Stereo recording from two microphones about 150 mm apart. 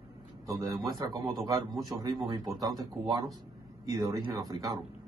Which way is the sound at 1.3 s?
Centre (ahead or behind).